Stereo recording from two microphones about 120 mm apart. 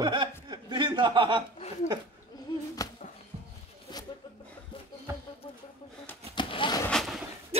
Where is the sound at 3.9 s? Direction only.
40° left (ahead or behind).